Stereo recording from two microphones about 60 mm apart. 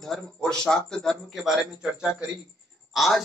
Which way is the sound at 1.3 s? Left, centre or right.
Centre.